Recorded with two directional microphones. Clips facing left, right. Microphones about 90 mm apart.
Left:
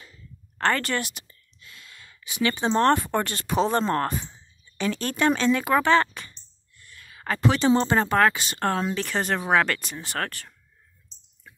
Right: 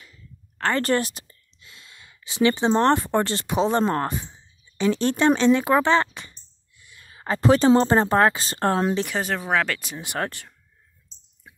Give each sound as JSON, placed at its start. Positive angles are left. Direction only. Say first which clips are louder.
{"t": 0.7, "sound": "speech", "louder": "right 6 dB", "side_deg": -35}
{"t": 9.0, "sound": "speech", "louder": "even", "side_deg": -5}
{"t": 9.9, "sound": "speech", "louder": "right 2 dB", "side_deg": -15}